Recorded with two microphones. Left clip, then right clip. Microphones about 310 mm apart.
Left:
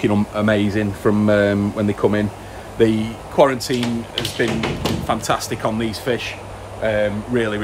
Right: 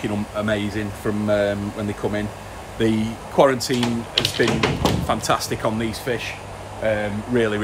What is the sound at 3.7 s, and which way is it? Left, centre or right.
Speech, right.